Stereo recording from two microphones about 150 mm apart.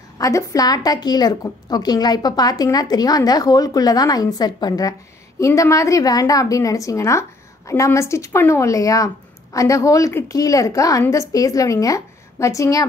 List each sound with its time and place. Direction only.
0.2 s a woman's voice: 20° left (ahead or behind)